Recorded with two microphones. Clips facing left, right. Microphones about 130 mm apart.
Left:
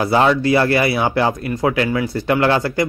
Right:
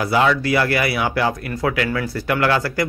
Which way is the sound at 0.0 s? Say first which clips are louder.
Left 3 dB; 30° left (ahead or behind).